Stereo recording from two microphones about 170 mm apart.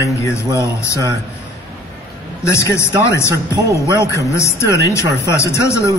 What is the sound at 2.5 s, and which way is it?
Speech, 15° left (ahead or behind).